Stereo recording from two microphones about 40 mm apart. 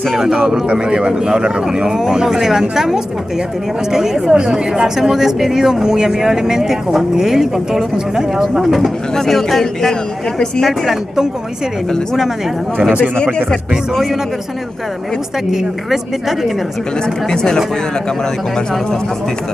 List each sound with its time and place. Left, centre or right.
0.1 s a woman's voice: centre
15.5 s a woman's voice: centre
17.3 s a man's voice: centre